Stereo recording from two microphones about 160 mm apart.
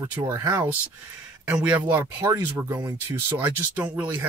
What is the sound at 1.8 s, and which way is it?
Speech, 15° right (ahead or behind).